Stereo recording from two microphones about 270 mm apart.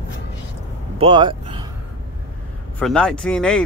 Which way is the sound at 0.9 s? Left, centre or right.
Centre.